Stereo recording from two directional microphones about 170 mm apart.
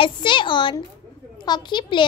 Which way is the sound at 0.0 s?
30° left (ahead or behind).